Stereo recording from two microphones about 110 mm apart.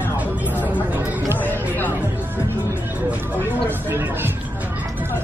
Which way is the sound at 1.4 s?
20° left (ahead or behind).